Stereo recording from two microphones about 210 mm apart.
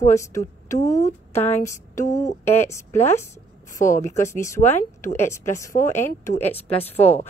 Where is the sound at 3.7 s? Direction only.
35° left (ahead or behind).